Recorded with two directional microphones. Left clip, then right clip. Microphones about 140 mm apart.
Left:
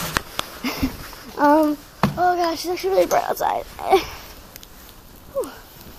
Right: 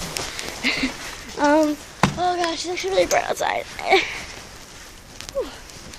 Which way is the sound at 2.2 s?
40° left (ahead or behind).